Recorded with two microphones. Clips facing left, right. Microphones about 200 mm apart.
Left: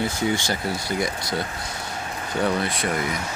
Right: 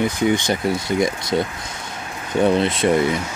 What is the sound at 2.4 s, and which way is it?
Speech, 20° right (ahead or behind).